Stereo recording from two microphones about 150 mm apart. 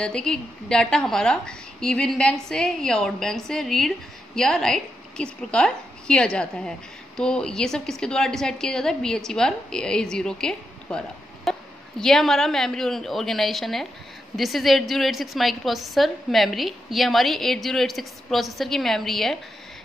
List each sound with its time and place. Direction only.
0.0 s a woman's voice: 5° left (ahead or behind)